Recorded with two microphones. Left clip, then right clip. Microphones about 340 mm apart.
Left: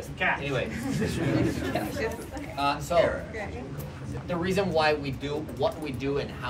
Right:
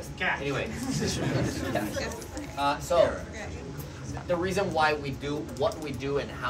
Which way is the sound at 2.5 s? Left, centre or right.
Centre.